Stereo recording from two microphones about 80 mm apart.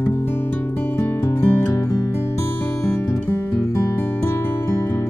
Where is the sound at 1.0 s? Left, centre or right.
Left.